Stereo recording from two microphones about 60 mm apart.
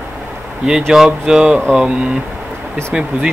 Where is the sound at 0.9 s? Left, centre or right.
Centre.